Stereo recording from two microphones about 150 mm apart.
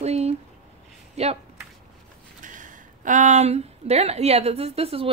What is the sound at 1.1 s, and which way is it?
Speech, 45° right (ahead or behind).